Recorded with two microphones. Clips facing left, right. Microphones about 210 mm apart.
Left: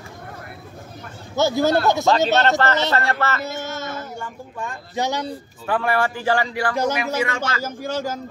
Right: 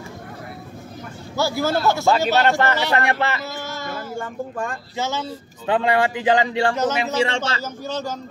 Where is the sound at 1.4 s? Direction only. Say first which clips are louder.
Left 3 dB; 20° left (ahead or behind).